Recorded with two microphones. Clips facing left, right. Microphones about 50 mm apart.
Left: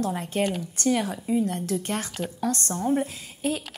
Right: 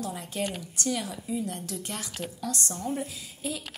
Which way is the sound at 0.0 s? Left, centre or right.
Left.